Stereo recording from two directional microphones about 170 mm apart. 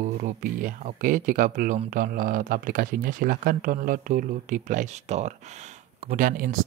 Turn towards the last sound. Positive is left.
turn(degrees=-55)  # may be behind; listen again after turning